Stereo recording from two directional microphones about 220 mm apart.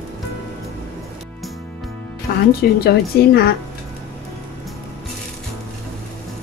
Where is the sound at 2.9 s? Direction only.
45° left (ahead or behind).